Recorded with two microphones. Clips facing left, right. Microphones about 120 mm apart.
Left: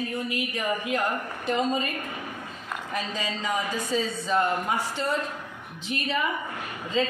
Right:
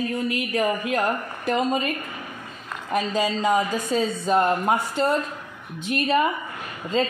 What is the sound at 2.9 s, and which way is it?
A woman's voice, 55° right (ahead or behind).